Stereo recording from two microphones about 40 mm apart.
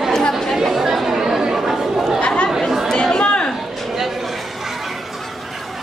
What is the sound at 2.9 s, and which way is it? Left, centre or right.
Chatter, centre.